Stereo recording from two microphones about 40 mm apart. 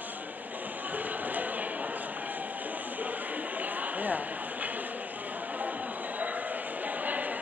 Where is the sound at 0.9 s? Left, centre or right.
Right.